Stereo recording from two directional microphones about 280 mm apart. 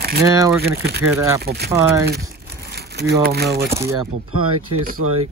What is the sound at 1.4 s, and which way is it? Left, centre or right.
Speech, right.